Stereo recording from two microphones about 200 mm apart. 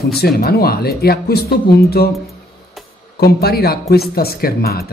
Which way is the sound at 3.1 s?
50° left (ahead or behind).